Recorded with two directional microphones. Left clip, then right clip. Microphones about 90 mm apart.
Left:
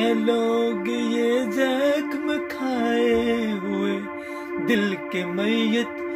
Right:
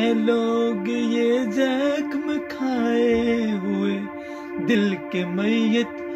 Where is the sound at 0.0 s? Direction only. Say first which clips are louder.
Even; 35° left (ahead or behind).